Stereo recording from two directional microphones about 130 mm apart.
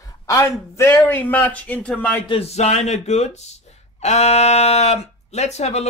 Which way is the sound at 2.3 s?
50° left (ahead or behind).